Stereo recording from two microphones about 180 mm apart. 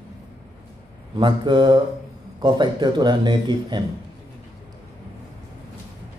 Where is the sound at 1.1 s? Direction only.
25° right (ahead or behind).